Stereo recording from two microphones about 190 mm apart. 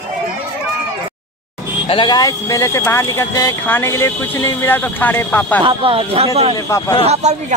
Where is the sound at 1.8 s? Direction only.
25° left (ahead or behind).